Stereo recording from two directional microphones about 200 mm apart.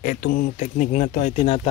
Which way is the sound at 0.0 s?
45° left (ahead or behind).